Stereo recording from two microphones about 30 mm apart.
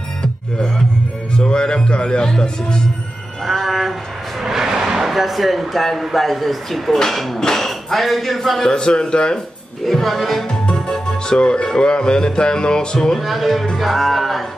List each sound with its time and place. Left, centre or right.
1.3 s music: left
3.4 s speech: centre
4.4 s vehicle: centre
5.1 s speech: centre
7.3 s a man's voice: centre
7.6 s speech: centre
8.5 s a man's voice: left
9.8 s speech: centre
10.7 s music: left
13.2 s speech: centre